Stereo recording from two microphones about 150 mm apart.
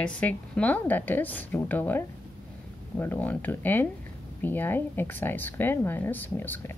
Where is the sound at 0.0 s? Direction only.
10° left (ahead or behind).